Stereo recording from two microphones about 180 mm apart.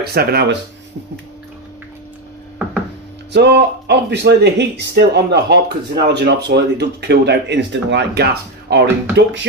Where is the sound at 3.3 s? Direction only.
70° right (ahead or behind).